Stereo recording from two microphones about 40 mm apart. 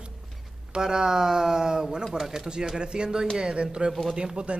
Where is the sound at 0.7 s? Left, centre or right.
Centre.